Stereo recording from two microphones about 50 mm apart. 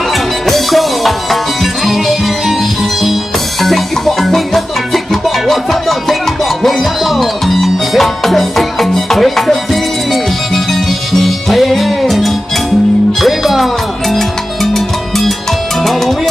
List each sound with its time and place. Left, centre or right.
0.5 s music: centre
3.6 s music: centre
15.8 s salsa music: centre